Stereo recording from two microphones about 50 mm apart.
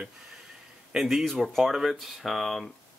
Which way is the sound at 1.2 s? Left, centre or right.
Centre.